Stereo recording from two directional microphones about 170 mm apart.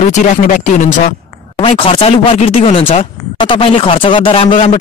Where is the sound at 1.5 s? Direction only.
30° left (ahead or behind).